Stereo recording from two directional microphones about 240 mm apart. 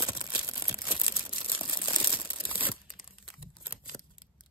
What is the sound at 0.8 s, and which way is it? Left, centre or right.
Crumpling, centre.